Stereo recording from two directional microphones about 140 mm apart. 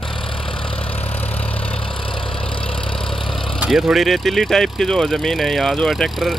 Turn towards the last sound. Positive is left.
turn(degrees=0)  # may be behind; listen again after turning